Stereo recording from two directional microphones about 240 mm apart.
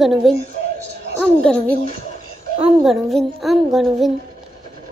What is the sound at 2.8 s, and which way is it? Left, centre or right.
A woman's voice, centre.